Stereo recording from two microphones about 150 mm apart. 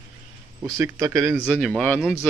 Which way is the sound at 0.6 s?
20° right (ahead or behind).